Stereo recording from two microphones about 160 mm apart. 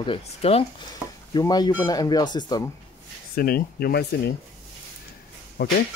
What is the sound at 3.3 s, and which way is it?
Speech, 70° left (ahead or behind).